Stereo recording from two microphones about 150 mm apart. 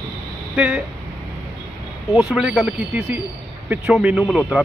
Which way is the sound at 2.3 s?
5° right (ahead or behind).